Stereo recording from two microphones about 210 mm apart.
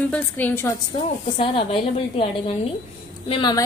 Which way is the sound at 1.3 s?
25° left (ahead or behind).